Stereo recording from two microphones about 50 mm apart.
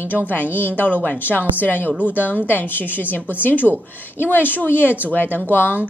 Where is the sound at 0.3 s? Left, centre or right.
Left.